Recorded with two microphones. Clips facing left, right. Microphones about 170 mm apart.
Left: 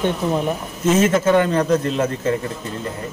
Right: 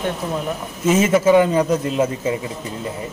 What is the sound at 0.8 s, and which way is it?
Speech, 5° right (ahead or behind).